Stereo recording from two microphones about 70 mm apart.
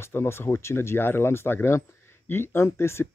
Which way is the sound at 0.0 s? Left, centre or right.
Left.